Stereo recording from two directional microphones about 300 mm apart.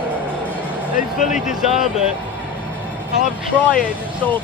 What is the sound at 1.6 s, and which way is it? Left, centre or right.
Speech, centre.